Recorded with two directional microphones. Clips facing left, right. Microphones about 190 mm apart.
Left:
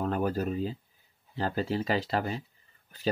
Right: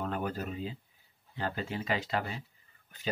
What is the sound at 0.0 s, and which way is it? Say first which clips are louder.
Speech: left 6 dB; 40° left (ahead or behind).